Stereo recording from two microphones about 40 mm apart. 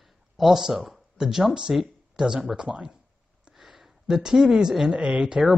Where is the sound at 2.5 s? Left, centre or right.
Right.